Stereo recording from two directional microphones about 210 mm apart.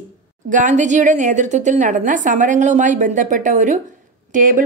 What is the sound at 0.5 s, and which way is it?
Speech, 35° right (ahead or behind).